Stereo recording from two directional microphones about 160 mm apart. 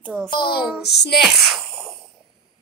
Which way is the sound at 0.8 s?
90° left.